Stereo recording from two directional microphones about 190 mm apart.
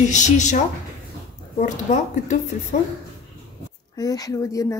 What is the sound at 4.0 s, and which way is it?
Speech, 20° left (ahead or behind).